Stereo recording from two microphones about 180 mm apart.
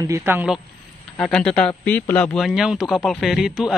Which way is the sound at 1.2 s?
5° left (ahead or behind).